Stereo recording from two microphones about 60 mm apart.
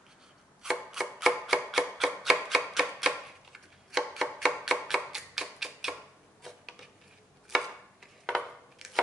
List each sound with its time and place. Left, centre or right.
0.6 s a sound: centre
3.5 s chopping: centre
4.6 s music: centre
7.4 s chopping: centre